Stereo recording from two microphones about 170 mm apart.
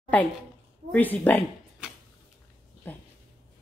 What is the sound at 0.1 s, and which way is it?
Speech, 10° left (ahead or behind).